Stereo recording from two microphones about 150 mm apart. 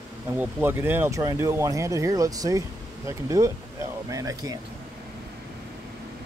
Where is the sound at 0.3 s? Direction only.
15° right (ahead or behind).